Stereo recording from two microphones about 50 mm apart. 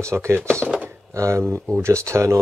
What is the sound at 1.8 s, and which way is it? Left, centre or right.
Speech, right.